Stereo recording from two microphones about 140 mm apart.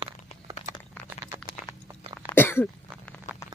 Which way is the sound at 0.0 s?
35° right (ahead or behind).